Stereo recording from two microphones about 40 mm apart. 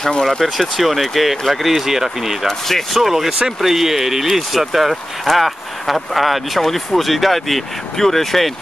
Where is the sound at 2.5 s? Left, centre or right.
Centre.